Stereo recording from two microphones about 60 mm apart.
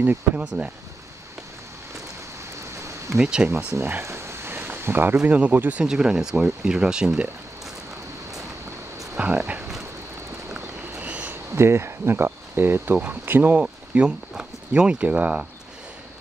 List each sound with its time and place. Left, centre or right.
0.6 s speech: right
3.2 s speech: centre
3.4 s speech: right
4.0 s a sound: right
5.2 s speech: right
5.8 s speech: centre
9.1 s a sound: centre
11.0 s a sound: right
11.5 s speech: right
13.6 s speech: centre